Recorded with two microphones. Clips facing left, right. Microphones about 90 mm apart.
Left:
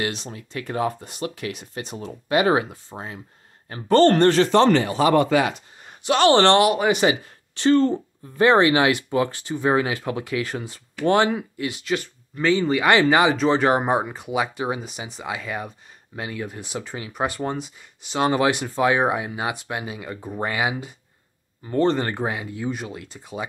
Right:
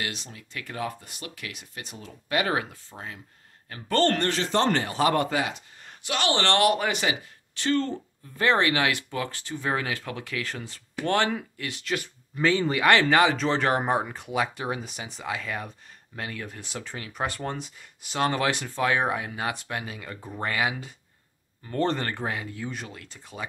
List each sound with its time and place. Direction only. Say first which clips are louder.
0.0 s speech: left 7 dB; 30° left (ahead or behind)
4.5 s speech: left 5 dB; 75° left (ahead or behind)
5.3 s speech: left 8 dB; 90° left
6.0 s speech: left 10 dB; 35° left (ahead or behind)
6.6 s speech: left 4 dB; 10° left (ahead or behind)
7.0 s speech: left 8 dB; 25° left (ahead or behind)
21.7 s speech: left 6 dB; centre (ahead or behind)
22.0 s speech: left 4 dB; 15° left (ahead or behind)